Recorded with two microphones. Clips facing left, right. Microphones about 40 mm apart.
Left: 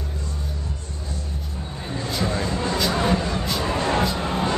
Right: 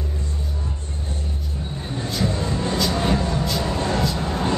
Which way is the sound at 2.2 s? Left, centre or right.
Left.